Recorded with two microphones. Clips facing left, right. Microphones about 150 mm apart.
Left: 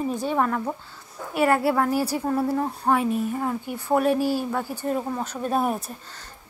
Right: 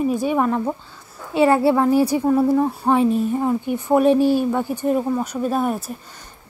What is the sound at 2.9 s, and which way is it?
A woman's voice, 25° right (ahead or behind).